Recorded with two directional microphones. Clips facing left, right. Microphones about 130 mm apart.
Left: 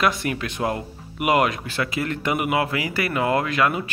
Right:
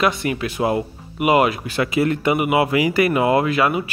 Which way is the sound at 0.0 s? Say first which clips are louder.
Right 3 dB; centre (ahead or behind).